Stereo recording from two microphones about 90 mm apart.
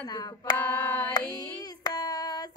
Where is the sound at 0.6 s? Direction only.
20° left (ahead or behind).